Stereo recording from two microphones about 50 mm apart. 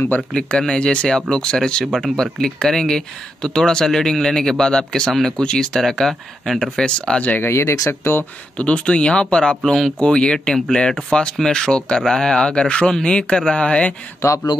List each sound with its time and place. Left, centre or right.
0.3 s speech: centre
6.8 s speech: centre
7.4 s speech: left
8.5 s speech: left
9.9 s speech: left